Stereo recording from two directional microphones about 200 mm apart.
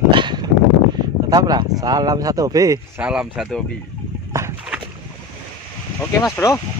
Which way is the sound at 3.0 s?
5° right (ahead or behind).